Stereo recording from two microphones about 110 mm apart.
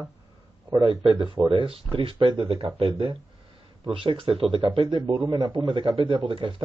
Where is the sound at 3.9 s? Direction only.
50° right (ahead or behind).